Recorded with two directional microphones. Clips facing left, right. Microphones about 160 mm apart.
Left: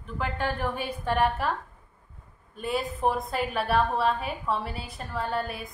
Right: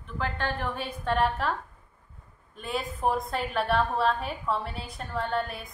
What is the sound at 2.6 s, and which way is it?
A woman's voice, centre (ahead or behind).